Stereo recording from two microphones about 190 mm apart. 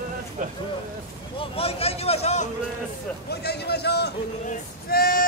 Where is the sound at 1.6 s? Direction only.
30° left (ahead or behind).